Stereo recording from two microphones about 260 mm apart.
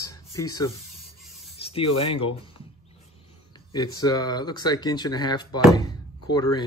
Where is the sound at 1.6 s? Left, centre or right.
Left.